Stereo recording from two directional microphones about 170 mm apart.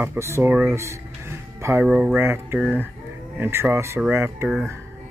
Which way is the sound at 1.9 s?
5° right (ahead or behind).